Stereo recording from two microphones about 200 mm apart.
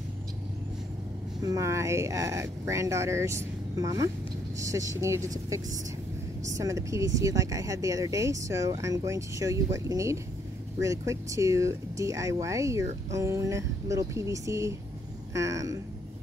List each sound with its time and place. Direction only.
1.4 s speech: 15° right (ahead or behind)